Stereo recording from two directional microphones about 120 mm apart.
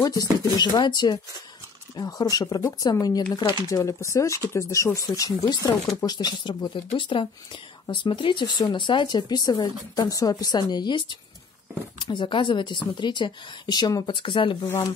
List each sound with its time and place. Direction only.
0.0 s speech: 30° left (ahead or behind)